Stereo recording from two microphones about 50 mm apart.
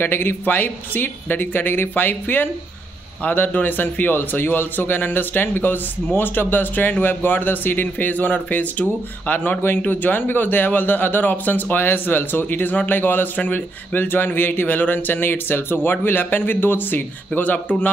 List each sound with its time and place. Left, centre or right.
0.0 s a man's voice: left
17.3 s a man's voice: left